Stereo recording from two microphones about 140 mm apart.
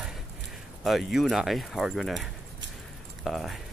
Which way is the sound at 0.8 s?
Centre (ahead or behind).